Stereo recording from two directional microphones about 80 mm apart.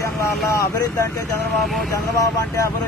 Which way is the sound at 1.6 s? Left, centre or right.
Centre.